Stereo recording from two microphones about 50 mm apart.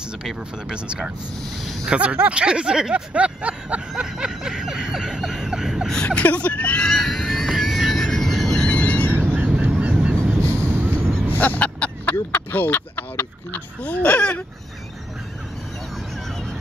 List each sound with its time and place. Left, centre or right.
0.2 s speech: centre
1.9 s speech: right
3.1 s speech: right
3.9 s vehicle: centre
6.0 s vehicle: left
6.8 s a sound: centre
8.6 s a sound: left
9.1 s vehicle: right
9.8 s honk: right
10.6 s vehicle: right
11.3 s a sound: left